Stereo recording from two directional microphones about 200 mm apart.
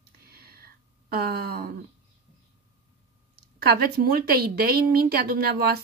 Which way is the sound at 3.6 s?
50° right (ahead or behind).